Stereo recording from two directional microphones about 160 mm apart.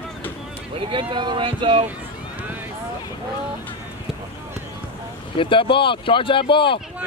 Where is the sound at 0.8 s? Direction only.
35° right (ahead or behind).